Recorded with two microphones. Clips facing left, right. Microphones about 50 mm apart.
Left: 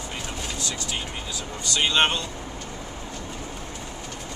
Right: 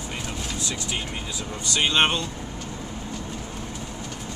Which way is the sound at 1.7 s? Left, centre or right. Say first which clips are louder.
Even; centre.